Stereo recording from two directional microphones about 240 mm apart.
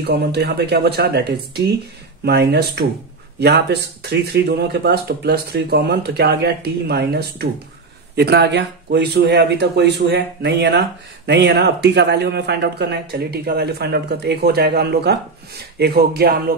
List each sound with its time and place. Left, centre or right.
0.0 s speech: right